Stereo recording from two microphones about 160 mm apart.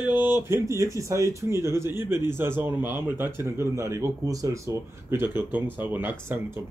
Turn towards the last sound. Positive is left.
turn(degrees=-15)  # may be behind; listen again after turning